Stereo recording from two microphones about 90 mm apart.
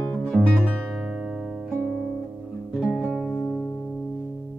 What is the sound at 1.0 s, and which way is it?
Music, 5° right (ahead or behind).